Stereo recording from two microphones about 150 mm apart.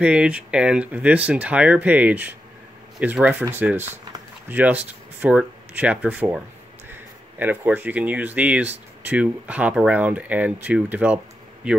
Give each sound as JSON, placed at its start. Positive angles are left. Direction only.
{"t": 0.0, "sound": "speech", "side_deg": -5}